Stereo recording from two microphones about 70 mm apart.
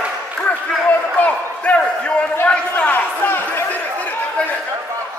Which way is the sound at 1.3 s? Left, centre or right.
Centre.